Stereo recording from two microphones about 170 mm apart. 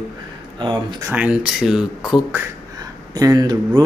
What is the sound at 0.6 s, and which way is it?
Speech, 25° right (ahead or behind).